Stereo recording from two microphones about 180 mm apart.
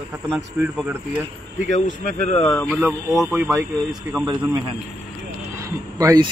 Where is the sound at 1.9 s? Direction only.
40° left (ahead or behind).